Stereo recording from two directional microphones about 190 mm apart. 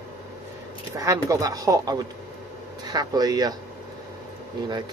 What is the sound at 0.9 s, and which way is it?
Speech, 20° right (ahead or behind).